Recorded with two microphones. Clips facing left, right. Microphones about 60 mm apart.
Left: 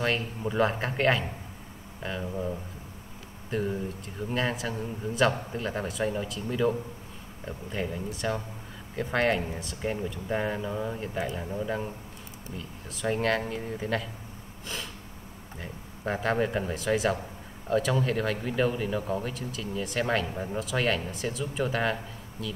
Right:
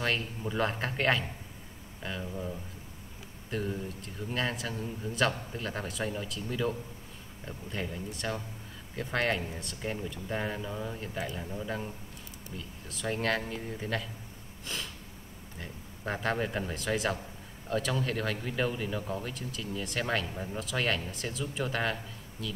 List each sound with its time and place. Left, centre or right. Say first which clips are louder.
0.0 s speech: left 3 dB; centre
2.2 s speech: left 5 dB; centre
3.4 s speech: left 4 dB; centre
15.5 s a sound: left 3 dB; centre
16.1 s speech: left 4 dB; centre
20.2 s speech: left 4 dB; centre
20.5 s speech: left 4 dB; centre